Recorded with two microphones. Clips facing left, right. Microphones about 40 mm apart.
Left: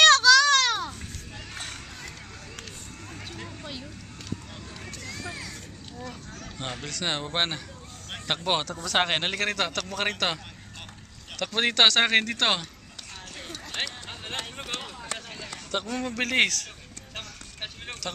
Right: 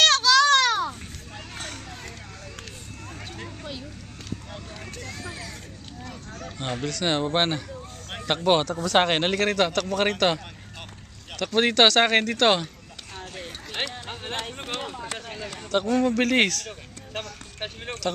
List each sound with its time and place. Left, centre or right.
0.1 s children playing: centre
3.3 s a sound: centre
4.9 s speech: centre
6.0 s a sound: centre
6.9 s a man's voice: centre
13.5 s a sound: centre
15.1 s run: centre
15.8 s a man's voice: centre
17.1 s vehicle: centre